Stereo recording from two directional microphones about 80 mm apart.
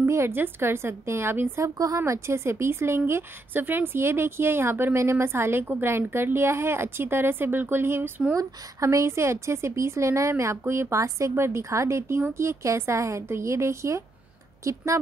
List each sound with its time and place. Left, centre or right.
0.0 s a woman's voice: right
1.6 s a woman's voice: right
8.4 s a woman's voice: right